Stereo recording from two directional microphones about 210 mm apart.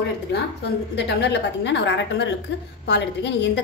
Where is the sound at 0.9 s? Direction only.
55° left (ahead or behind).